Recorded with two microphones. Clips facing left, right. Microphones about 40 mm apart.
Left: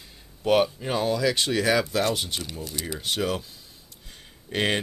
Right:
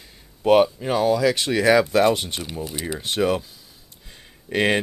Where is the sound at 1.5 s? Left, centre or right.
Centre.